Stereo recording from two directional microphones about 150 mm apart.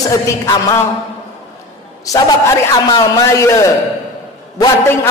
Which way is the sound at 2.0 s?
25° left (ahead or behind).